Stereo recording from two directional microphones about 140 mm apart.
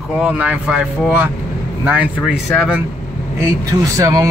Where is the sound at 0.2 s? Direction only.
10° right (ahead or behind).